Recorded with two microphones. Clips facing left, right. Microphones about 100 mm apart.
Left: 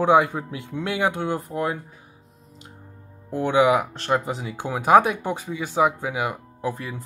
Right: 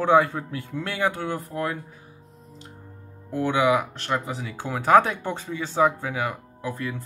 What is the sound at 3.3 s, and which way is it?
Speech, 25° left (ahead or behind).